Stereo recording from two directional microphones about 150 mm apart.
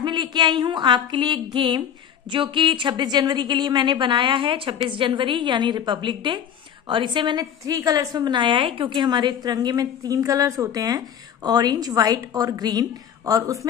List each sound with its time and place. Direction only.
0.0 s a woman's voice: 30° right (ahead or behind)